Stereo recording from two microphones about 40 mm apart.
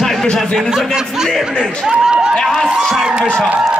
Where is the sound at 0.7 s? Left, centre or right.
Centre.